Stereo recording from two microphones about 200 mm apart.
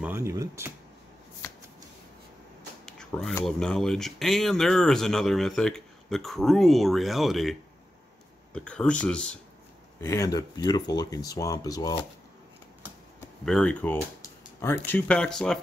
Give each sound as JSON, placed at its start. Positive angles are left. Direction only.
{"t": 0.0, "sound": "a sound", "side_deg": -15}
{"t": 2.8, "sound": "speech", "side_deg": 5}
{"t": 8.5, "sound": "speech", "side_deg": 5}
{"t": 13.5, "sound": "speech", "side_deg": 5}